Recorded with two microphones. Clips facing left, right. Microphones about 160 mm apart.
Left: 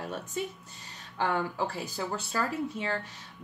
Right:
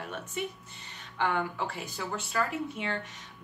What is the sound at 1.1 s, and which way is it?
A woman's voice, 35° left (ahead or behind).